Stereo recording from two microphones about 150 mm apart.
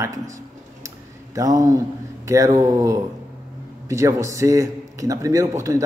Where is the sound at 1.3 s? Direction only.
25° right (ahead or behind).